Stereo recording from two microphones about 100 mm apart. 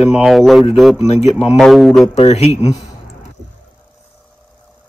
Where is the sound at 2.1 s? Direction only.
90° left.